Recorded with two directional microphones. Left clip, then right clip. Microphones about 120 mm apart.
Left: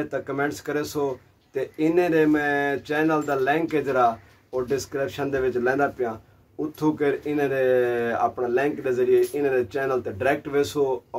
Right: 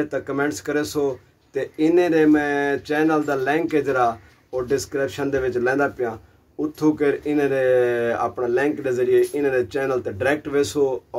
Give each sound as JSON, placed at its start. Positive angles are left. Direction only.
{"t": 0.0, "sound": "speech", "side_deg": -15}